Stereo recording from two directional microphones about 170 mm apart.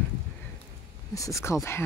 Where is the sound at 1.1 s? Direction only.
20° left (ahead or behind).